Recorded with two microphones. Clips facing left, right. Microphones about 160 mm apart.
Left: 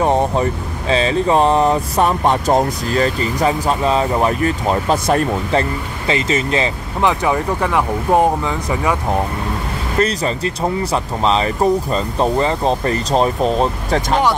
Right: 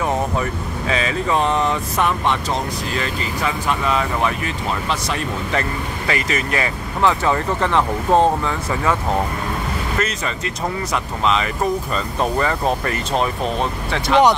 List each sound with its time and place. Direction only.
0.0 s speech: 30° left (ahead or behind)
5.5 s speech: 30° left (ahead or behind)
9.9 s speech: 35° left (ahead or behind)